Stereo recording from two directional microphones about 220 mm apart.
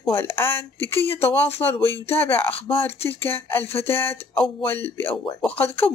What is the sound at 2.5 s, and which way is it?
Speech, 25° left (ahead or behind).